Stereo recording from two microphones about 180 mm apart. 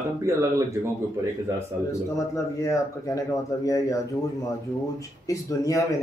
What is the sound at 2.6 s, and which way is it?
Speech, 15° left (ahead or behind).